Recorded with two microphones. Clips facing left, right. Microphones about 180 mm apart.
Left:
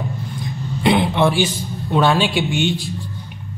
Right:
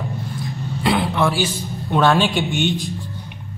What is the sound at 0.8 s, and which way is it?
Vehicle, 20° left (ahead or behind).